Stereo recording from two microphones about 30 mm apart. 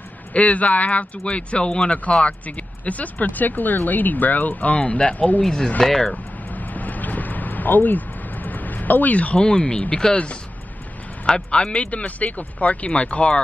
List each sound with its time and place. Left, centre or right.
0.3 s speech: left
1.2 s speech: left
2.4 s speech: left
5.9 s speech: centre
6.5 s vehicle: left
9.4 s speech: left
10.1 s speech: left
11.2 s speech: left
12.2 s speech: left